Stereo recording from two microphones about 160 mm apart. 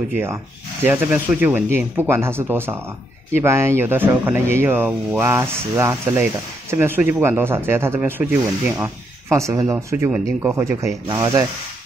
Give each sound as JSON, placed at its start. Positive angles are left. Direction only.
{"t": 0.1, "sound": "speech", "side_deg": -15}